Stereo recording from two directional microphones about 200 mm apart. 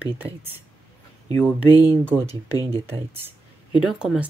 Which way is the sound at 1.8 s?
10° right (ahead or behind).